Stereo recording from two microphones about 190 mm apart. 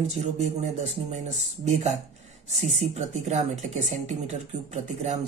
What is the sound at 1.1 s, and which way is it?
Speech, 35° right (ahead or behind).